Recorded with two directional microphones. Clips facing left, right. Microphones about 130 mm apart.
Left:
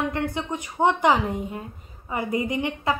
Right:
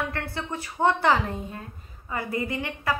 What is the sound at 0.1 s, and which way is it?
A woman's voice, 15° left (ahead or behind).